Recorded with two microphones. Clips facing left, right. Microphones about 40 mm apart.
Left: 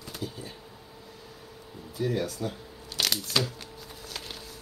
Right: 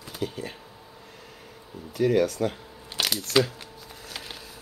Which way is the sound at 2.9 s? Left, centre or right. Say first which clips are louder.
Right 1 dB; centre.